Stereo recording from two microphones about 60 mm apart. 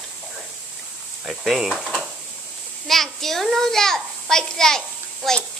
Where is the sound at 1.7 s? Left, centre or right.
Centre.